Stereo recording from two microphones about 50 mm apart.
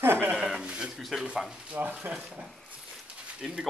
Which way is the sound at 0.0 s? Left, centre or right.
Right.